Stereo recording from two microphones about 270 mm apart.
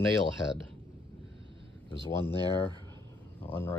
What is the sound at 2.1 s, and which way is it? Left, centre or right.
Speech, centre.